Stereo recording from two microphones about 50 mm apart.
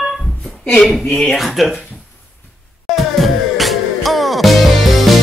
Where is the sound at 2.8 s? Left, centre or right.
Centre.